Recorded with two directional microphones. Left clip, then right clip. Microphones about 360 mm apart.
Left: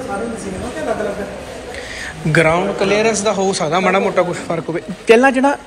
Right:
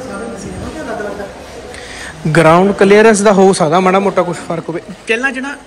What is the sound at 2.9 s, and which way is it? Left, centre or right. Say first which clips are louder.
Speech: right 8 dB; right.